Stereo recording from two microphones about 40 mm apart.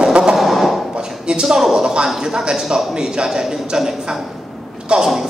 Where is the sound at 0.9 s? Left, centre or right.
Right.